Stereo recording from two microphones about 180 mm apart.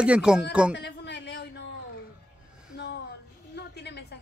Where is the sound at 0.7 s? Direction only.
70° left (ahead or behind).